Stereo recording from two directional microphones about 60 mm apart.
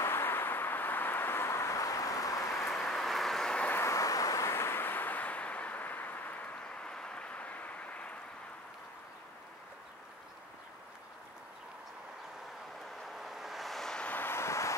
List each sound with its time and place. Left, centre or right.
0.0 s vehicle: left
2.7 s vehicle: centre
3.7 s vehicle: left
4.5 s vehicle: left
13.0 s vehicle: centre
14.0 s vehicle: left
14.3 s vehicle: left